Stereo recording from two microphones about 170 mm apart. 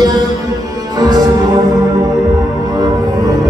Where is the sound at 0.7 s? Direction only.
25° right (ahead or behind).